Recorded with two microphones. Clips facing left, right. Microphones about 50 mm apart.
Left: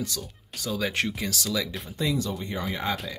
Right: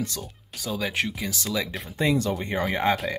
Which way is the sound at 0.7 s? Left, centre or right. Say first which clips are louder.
Even; centre.